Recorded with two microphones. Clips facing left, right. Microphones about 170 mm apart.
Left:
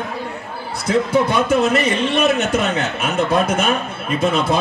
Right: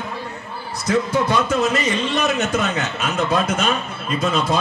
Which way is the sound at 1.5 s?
60° left (ahead or behind).